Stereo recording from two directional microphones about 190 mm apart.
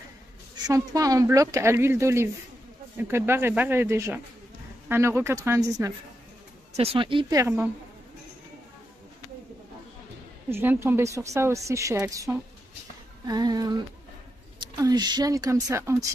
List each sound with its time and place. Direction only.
0.7 s a woman's voice: 20° right (ahead or behind)
6.8 s speech: 30° right (ahead or behind); by 7.7 s 10° right (ahead or behind)
10.5 s a woman's voice: 10° right (ahead or behind)